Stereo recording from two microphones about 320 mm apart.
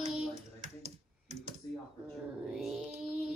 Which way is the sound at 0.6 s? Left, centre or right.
Right.